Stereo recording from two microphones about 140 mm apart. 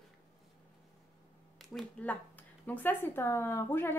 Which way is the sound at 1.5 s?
5° left (ahead or behind).